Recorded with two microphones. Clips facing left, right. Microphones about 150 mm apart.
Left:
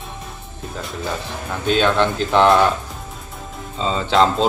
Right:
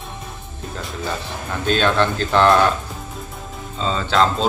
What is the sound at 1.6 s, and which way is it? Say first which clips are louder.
Speech: left 1 dB; 10° left (ahead or behind).